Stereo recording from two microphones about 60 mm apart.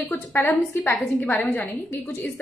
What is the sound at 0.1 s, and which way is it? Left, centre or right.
Speech, left.